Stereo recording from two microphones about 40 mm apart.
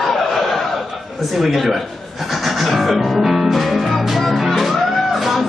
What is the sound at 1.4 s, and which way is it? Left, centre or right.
Speech, centre.